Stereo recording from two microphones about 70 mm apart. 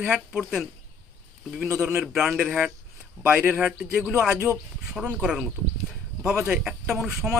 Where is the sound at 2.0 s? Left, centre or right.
Centre.